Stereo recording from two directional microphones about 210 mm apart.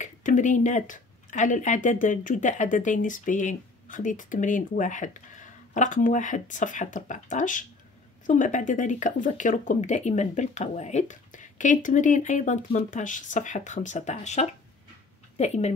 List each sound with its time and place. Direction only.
0.0 s speech: 35° left (ahead or behind)